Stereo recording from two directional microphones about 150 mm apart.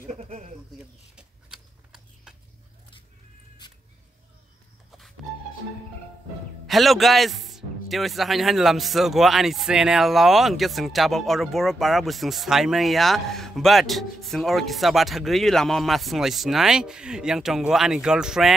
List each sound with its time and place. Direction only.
0.1 s bird: 45° right (ahead or behind)
6.7 s a man's voice: centre (ahead or behind)